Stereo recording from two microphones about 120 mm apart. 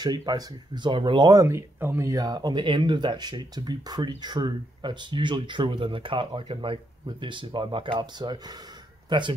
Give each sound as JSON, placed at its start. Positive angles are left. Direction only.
{"t": 0.0, "sound": "speech", "side_deg": -35}